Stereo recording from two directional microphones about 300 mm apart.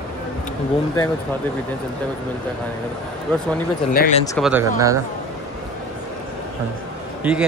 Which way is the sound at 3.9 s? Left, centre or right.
Left.